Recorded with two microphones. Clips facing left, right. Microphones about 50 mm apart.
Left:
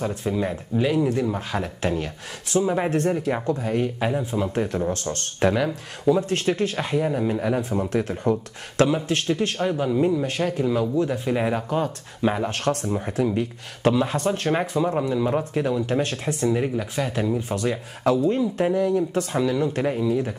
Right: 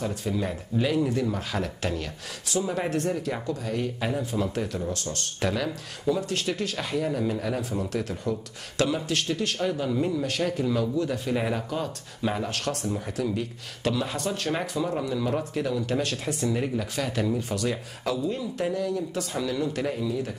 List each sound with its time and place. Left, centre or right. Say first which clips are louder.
0.0 s speech: left 4 dB; left
5.5 s speech: left 5 dB; left
6.2 s speech: left 6 dB; left
12.4 s speech: left 5 dB; left; by 17.5 s centre
17.5 s speech: left 3 dB; left
18.4 s speech: left 7 dB; left